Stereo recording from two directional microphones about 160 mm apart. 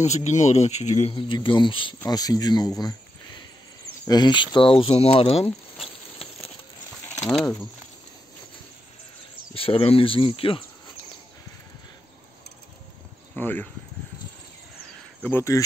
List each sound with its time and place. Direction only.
0.0 s speech: 45° left (ahead or behind)
1.1 s speech: 30° left (ahead or behind)
7.2 s speech: 5° left (ahead or behind)
9.5 s speech: 35° left (ahead or behind)
13.4 s speech: 10° left (ahead or behind)
15.2 s speech: 15° left (ahead or behind)